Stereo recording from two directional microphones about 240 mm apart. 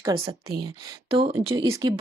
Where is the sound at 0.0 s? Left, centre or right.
Centre.